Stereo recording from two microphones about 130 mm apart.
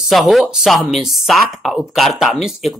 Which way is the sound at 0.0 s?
Centre (ahead or behind).